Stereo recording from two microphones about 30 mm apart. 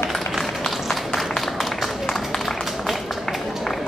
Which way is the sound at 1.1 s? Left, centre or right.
Centre.